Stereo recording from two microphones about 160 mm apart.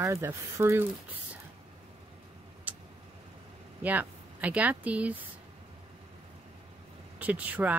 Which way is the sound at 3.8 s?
10° right (ahead or behind).